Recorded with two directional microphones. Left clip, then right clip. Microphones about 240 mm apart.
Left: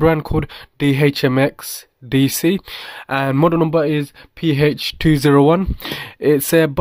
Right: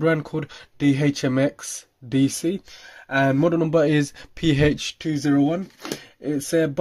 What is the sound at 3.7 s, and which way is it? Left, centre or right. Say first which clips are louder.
Speech: left 2 dB; centre.